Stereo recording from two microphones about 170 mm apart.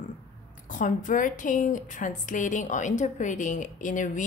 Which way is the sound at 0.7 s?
50° left (ahead or behind).